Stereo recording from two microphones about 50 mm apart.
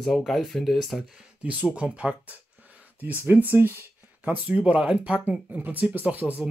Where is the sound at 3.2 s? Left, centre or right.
Right.